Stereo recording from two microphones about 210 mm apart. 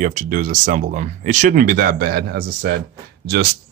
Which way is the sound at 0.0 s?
40° right (ahead or behind).